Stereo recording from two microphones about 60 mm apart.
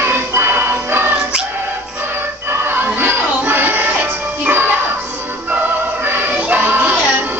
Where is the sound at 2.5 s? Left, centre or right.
Right.